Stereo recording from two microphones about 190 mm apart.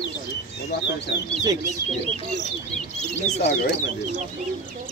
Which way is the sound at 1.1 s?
65° left (ahead or behind).